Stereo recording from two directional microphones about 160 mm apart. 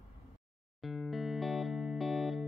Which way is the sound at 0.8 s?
Centre (ahead or behind).